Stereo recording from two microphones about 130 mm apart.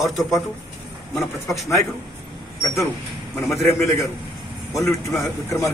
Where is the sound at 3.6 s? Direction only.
20° left (ahead or behind).